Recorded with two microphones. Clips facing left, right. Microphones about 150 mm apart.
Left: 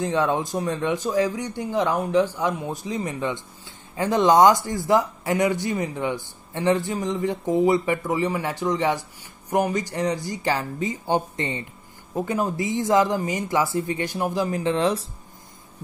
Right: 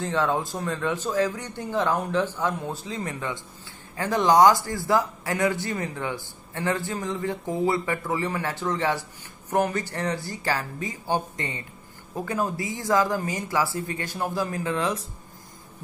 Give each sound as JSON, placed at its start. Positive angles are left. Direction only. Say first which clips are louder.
{"t": 0.0, "sound": "a man's voice", "louder": "left 2 dB", "side_deg": 20}